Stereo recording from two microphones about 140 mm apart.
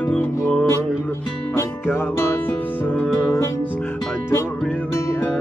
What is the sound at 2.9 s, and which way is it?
Music, 20° left (ahead or behind).